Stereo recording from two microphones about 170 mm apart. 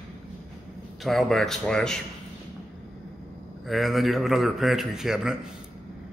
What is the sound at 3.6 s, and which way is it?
A man's voice, centre (ahead or behind).